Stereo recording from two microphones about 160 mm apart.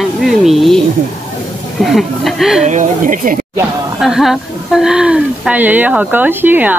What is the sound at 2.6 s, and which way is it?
Speech, 50° right (ahead or behind).